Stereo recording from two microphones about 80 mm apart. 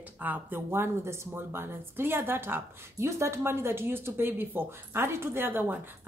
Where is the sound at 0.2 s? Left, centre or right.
Right.